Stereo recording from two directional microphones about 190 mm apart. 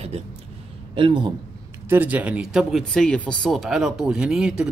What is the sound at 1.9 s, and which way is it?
A man's voice, 10° right (ahead or behind).